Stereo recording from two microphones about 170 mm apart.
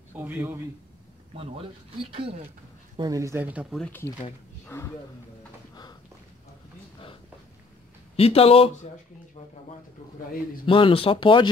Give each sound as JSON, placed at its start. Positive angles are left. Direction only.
{"t": 0.1, "sound": "a man's voice", "side_deg": -10}
{"t": 1.3, "sound": "speech", "side_deg": -35}
{"t": 3.0, "sound": "speech", "side_deg": -20}
{"t": 3.7, "sound": "speech", "side_deg": 10}
{"t": 8.2, "sound": "speech", "side_deg": 35}
{"t": 10.6, "sound": "speech", "side_deg": 30}